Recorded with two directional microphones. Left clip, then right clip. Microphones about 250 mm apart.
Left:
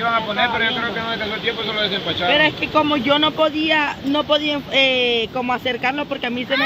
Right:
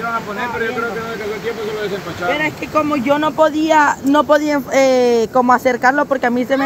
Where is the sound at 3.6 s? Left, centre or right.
Right.